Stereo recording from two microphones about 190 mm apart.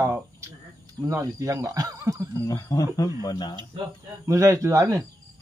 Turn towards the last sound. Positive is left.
turn(degrees=-15)  # may be behind; listen again after turning